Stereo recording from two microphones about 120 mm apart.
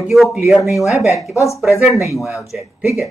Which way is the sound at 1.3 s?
25° left (ahead or behind).